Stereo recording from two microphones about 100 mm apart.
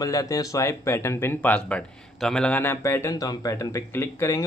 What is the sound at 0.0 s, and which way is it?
A man's voice, 35° left (ahead or behind).